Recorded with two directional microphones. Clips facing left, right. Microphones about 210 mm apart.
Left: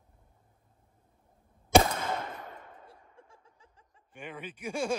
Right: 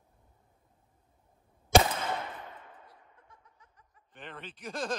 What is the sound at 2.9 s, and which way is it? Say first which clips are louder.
Laughter: left 4 dB; 30° left (ahead or behind).